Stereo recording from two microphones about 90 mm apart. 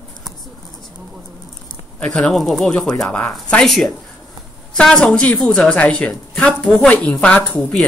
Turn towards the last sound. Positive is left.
turn(degrees=15)  # may be behind; listen again after turning